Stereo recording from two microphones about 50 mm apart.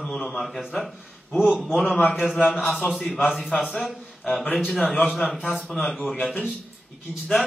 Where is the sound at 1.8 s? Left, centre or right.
Left.